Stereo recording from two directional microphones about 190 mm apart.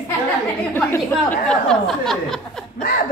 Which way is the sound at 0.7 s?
10° left (ahead or behind).